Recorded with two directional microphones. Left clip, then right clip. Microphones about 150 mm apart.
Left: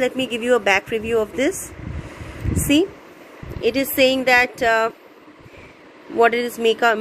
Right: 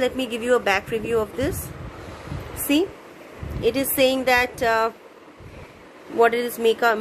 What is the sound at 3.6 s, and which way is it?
Speech, 10° left (ahead or behind).